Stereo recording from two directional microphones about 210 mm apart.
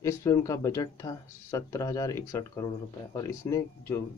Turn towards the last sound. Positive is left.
turn(degrees=15)  # may be behind; listen again after turning